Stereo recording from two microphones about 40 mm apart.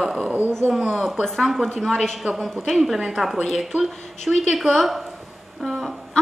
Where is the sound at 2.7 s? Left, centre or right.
Centre.